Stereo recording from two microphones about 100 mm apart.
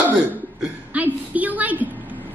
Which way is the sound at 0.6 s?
15° right (ahead or behind).